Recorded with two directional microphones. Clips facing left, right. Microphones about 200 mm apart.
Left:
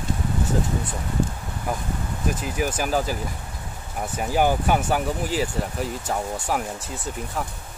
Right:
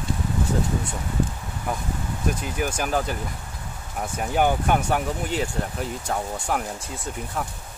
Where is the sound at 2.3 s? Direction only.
Centre (ahead or behind).